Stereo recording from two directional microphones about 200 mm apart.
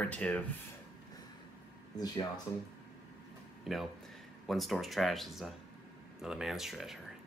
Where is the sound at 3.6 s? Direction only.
Centre (ahead or behind).